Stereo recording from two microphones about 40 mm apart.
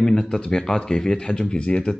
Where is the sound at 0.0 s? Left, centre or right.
Centre.